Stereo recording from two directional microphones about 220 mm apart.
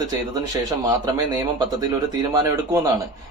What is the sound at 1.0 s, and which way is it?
Speech, 15° right (ahead or behind).